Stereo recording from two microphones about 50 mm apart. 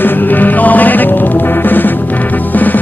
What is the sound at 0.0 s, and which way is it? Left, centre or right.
Music, left.